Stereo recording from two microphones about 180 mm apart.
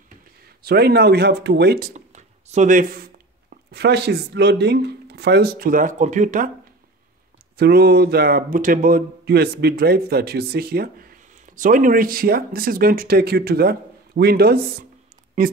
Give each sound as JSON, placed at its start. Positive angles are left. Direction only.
{"t": 0.6, "sound": "speech", "side_deg": -60}
{"t": 2.0, "sound": "speech", "side_deg": -40}
{"t": 7.5, "sound": "speech", "side_deg": -60}